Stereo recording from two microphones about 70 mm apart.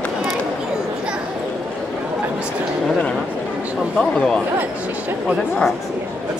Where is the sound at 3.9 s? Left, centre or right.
Centre.